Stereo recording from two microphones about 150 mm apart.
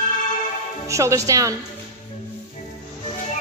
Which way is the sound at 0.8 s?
20° right (ahead or behind).